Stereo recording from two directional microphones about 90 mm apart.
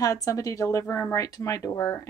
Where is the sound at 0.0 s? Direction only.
40° left (ahead or behind).